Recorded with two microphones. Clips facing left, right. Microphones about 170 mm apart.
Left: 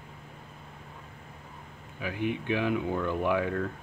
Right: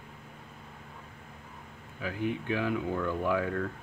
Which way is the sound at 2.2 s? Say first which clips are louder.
Left 2 dB; 15° left (ahead or behind).